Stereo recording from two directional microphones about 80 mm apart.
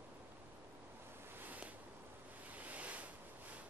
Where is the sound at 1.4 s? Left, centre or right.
Centre.